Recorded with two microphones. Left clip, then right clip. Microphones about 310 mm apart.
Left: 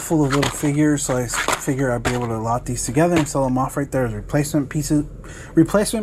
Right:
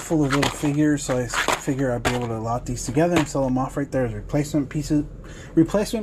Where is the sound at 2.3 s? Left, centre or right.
Centre.